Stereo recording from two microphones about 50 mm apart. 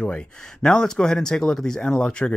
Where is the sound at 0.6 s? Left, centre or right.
Centre.